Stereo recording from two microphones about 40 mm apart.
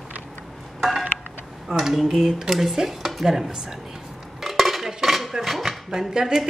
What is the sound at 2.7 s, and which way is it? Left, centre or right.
Stir, centre.